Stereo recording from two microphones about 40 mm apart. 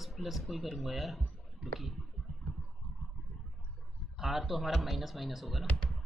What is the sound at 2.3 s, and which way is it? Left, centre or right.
Vehicle, centre.